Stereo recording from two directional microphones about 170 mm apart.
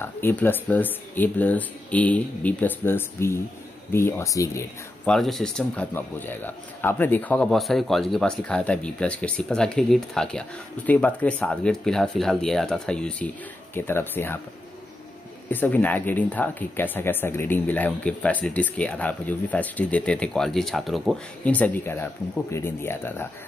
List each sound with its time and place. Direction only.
0.0 s speech: 10° left (ahead or behind)
5.0 s a man's voice: 5° left (ahead or behind)
15.5 s speech: 10° left (ahead or behind)